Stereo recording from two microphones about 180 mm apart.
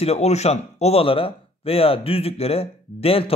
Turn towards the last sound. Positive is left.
turn(degrees=35)  # may be behind; listen again after turning